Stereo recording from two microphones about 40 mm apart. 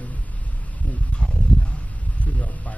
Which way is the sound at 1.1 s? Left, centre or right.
Left.